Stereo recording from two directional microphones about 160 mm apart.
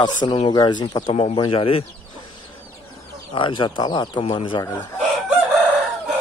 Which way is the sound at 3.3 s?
30° left (ahead or behind).